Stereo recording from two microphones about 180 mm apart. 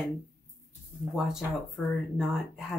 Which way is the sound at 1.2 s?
5° right (ahead or behind).